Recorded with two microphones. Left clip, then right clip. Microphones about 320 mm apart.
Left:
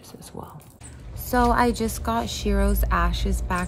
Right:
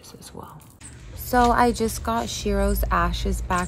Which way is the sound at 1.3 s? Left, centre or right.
Centre.